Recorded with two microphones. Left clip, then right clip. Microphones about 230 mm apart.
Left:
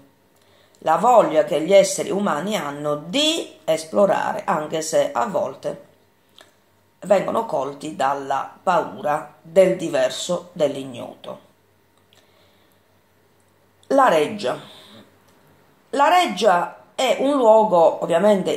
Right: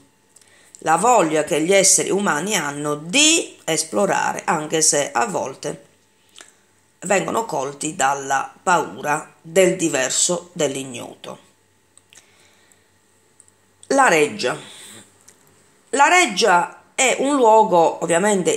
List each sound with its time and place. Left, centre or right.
0.8 s speech: right
6.4 s a sound: right
7.0 s speech: right
13.8 s speech: right
15.9 s speech: right